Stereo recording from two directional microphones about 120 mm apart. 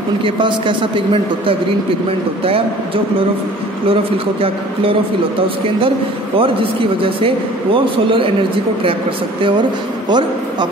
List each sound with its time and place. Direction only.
0.2 s speech: 40° right (ahead or behind)
3.9 s speech: 50° right (ahead or behind)
6.3 s speech: 45° right (ahead or behind)
10.0 s a man's voice: 40° right (ahead or behind)